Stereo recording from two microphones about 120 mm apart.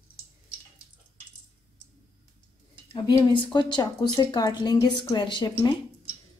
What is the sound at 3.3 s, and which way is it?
A woman's voice, 40° left (ahead or behind).